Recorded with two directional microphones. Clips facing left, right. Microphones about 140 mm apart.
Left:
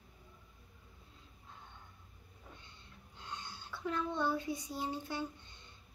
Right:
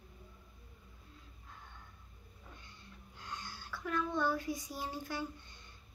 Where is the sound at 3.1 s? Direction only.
20° left (ahead or behind).